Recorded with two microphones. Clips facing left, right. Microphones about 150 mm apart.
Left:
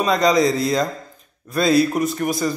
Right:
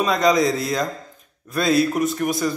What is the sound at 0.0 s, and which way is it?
A man's voice, centre (ahead or behind).